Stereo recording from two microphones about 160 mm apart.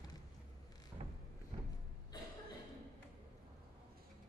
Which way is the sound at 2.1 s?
25° left (ahead or behind).